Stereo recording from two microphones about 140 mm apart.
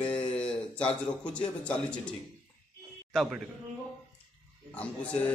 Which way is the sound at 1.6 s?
10° left (ahead or behind).